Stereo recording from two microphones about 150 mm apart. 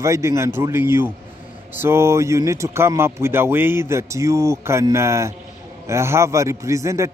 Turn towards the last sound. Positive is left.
turn(degrees=-20)  # may be behind; listen again after turning